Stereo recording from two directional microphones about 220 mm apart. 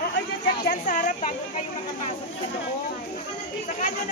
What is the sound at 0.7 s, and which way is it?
Speech, 35° left (ahead or behind).